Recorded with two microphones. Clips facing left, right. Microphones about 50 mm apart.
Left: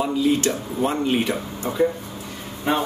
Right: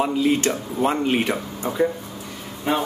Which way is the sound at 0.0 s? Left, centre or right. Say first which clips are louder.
Even; right.